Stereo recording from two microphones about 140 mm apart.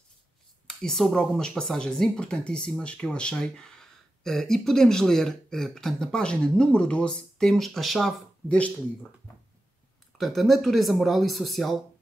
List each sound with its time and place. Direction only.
0.7 s speech: 5° left (ahead or behind)
10.1 s speech: centre (ahead or behind)